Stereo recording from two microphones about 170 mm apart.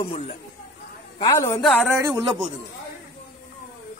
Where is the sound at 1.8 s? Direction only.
15° right (ahead or behind).